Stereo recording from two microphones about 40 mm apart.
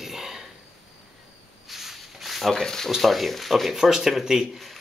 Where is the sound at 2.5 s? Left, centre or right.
Centre.